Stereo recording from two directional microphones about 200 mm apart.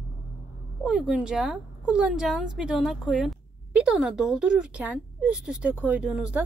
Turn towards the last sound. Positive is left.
turn(degrees=-5)  # may be behind; listen again after turning